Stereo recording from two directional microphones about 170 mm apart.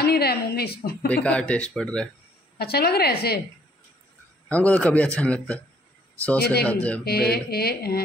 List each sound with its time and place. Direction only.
0.0 s a woman's voice: 70° left (ahead or behind)
1.0 s a man's voice: 10° left (ahead or behind)
2.6 s a woman's voice: 65° left (ahead or behind)
4.5 s a man's voice: 10° left (ahead or behind)
6.6 s a man's voice: 10° left (ahead or behind)
7.1 s a woman's voice: 65° left (ahead or behind)